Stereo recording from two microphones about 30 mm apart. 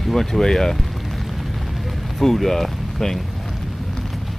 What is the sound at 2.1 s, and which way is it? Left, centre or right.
Speech, centre.